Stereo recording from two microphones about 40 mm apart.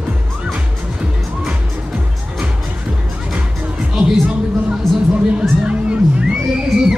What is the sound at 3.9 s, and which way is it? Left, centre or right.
Music, right.